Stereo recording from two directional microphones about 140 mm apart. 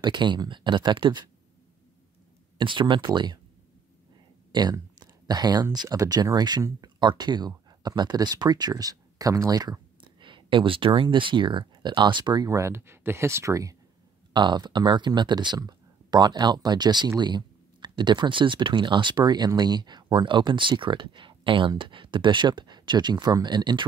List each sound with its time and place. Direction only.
0.0 s speech: 35° right (ahead or behind)
2.5 s speech: 35° right (ahead or behind)
4.5 s speech: 30° right (ahead or behind)